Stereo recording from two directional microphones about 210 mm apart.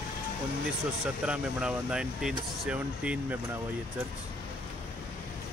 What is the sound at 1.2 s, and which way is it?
Speech, 5° right (ahead or behind).